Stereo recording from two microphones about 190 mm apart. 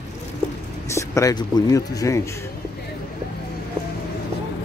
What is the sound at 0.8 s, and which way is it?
Speech, 15° left (ahead or behind).